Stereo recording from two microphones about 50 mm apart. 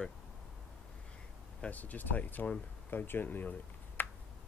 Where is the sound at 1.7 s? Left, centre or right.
Left.